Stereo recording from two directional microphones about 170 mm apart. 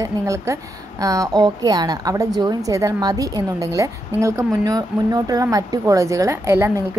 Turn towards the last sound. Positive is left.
turn(degrees=-15)  # may be behind; listen again after turning